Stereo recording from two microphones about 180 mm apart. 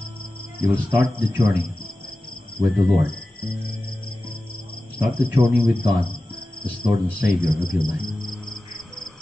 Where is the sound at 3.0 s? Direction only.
60° left (ahead or behind).